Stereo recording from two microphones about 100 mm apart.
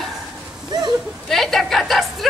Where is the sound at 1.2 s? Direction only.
5° left (ahead or behind).